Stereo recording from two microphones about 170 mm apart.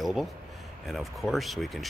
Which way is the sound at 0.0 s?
Centre (ahead or behind).